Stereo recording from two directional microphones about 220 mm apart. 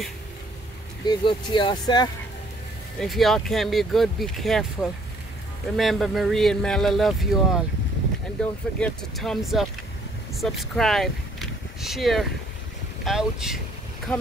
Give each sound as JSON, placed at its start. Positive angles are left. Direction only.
{"t": 1.0, "sound": "speech", "side_deg": 20}
{"t": 3.0, "sound": "speech", "side_deg": 0}
{"t": 5.8, "sound": "speech", "side_deg": 0}